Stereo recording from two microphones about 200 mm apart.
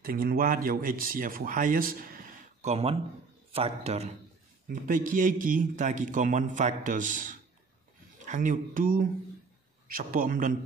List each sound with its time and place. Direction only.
0.0 s speech: 45° right (ahead or behind)
2.7 s a man's voice: 30° right (ahead or behind)
4.6 s a man's voice: 40° right (ahead or behind)